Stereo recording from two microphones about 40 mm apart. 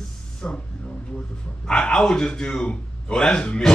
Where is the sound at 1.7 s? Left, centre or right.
Left.